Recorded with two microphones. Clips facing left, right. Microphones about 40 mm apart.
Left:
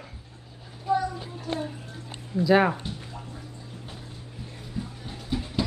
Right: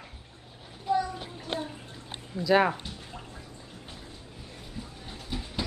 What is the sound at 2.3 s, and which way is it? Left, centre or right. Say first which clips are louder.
Speech: left 3 dB; centre.